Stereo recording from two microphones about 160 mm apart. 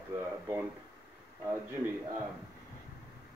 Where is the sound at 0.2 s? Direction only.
15° right (ahead or behind).